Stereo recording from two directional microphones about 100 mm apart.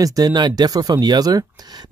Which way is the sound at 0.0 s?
40° right (ahead or behind).